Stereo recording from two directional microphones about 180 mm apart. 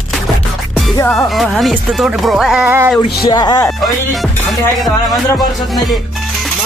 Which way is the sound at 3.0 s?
25° left (ahead or behind).